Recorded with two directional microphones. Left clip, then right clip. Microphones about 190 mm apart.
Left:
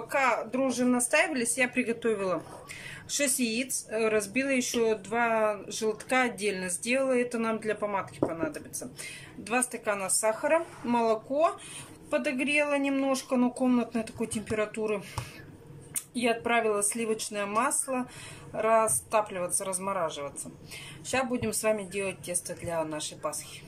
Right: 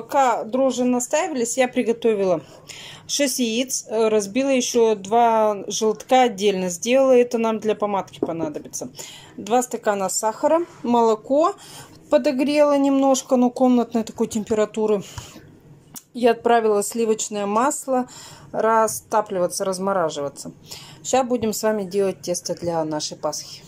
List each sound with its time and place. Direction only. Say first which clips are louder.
0.1 s speech: right 8 dB; 30° right (ahead or behind)
16.2 s speech: right 10 dB; 40° right (ahead or behind)